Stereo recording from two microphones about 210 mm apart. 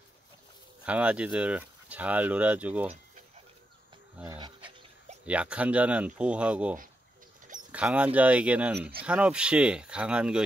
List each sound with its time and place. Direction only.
0.8 s speech: 5° right (ahead or behind)
4.2 s speech: 15° right (ahead or behind)
5.2 s speech: 5° right (ahead or behind)